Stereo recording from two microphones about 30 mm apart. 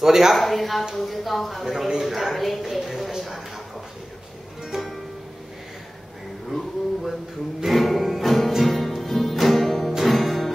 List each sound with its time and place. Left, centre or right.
0.0 s speech: centre
0.4 s speech: centre
2.8 s a sound: centre
4.7 s music: right
6.5 s a sound: centre
7.7 s music: centre
8.7 s music: centre